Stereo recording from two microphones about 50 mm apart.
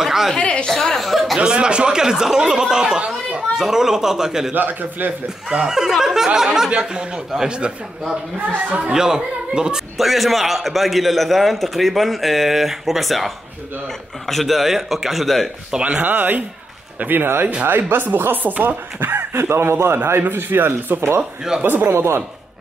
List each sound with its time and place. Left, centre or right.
0.0 s a sound: centre
0.4 s a woman's voice: left
0.7 s a man's voice: centre
1.4 s speech: centre
4.6 s speech: right
5.5 s speech: centre
8.9 s speech: centre
9.9 s a man's voice: centre
15.8 s speech: right
18.9 s speech: right
19.5 s a man's voice: right
20.2 s speech: right
21.2 s speech: centre
21.6 s speech: right